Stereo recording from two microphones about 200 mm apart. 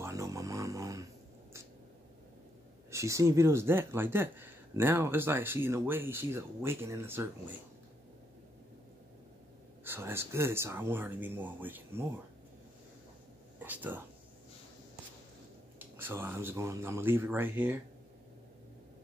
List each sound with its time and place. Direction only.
0.0 s music: 15° right (ahead or behind)
2.9 s speech: 15° right (ahead or behind)
9.8 s speech: 10° right (ahead or behind)
13.6 s speech: 10° right (ahead or behind)
15.8 s speech: 10° right (ahead or behind)